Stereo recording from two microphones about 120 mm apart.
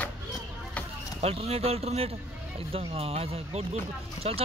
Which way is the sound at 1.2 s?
60° right (ahead or behind).